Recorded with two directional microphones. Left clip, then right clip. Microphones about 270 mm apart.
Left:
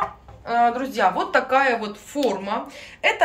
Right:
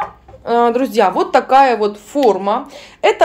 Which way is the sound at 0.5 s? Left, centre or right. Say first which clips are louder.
Right 6 dB; right.